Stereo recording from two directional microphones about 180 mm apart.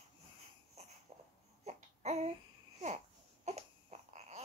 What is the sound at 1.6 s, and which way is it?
Baby cry, 35° right (ahead or behind).